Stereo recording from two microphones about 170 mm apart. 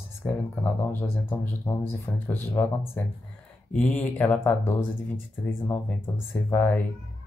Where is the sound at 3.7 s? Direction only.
10° left (ahead or behind).